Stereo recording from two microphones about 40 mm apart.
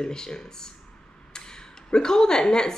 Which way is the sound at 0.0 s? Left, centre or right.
Centre.